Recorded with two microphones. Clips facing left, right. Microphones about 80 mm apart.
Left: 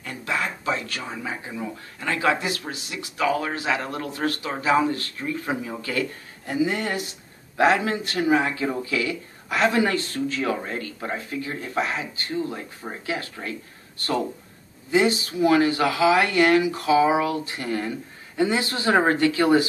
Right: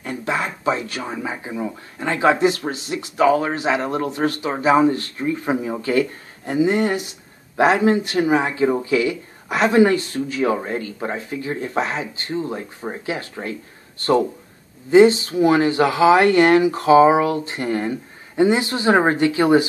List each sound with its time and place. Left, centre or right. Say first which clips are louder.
0.0 s speech: right 4 dB; right